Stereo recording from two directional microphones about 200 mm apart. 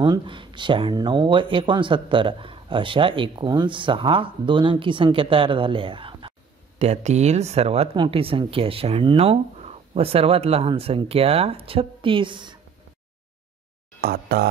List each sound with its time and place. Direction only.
0.0 s speech: 25° right (ahead or behind)
14.0 s speech: 50° right (ahead or behind)